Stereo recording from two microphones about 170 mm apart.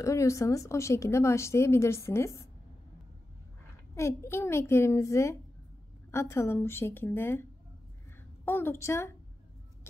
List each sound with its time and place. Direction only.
0.0 s a woman's voice: 15° left (ahead or behind)
3.9 s a woman's voice: 15° left (ahead or behind)
8.5 s a woman's voice: 15° left (ahead or behind)